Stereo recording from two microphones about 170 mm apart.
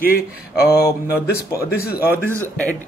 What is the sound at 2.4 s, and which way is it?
Speech, 10° left (ahead or behind).